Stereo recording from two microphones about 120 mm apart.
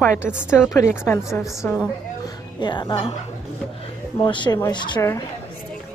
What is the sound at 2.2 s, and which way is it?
Speech, 40° left (ahead or behind).